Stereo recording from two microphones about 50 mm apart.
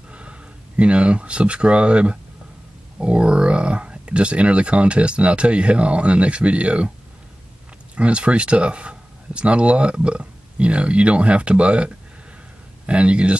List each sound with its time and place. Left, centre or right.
0.1 s speech: right
7.9 s speech: right